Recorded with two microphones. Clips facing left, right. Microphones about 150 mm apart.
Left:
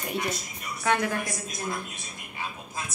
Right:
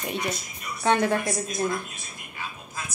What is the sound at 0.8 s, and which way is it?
Speech, 25° right (ahead or behind).